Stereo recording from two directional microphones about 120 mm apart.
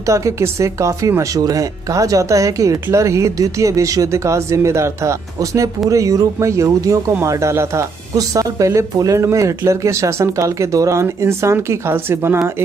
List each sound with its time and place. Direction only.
0.0 s speech: 25° right (ahead or behind)